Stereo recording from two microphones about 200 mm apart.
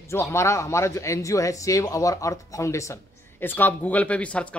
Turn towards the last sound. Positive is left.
turn(degrees=5)  # may be behind; listen again after turning